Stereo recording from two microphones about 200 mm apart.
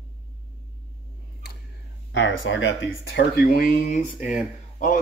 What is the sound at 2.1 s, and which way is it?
A man's voice, 70° left (ahead or behind).